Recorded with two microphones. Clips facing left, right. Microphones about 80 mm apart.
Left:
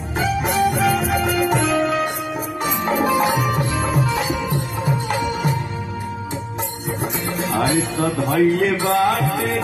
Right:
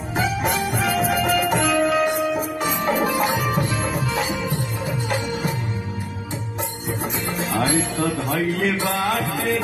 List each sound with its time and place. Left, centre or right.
0.4 s music: centre
3.9 s music: left
7.6 s a man's voice: left